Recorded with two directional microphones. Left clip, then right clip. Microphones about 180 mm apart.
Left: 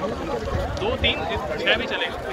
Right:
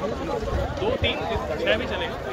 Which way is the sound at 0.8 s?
60° right (ahead or behind).